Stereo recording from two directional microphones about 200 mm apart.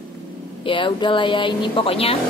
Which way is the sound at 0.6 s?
25° left (ahead or behind).